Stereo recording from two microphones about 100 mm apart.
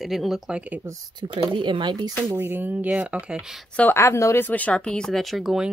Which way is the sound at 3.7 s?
15° left (ahead or behind).